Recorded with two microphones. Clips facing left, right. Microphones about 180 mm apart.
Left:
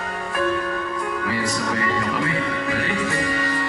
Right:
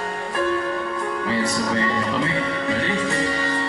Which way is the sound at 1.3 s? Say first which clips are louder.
Right 4 dB; 25° right (ahead or behind).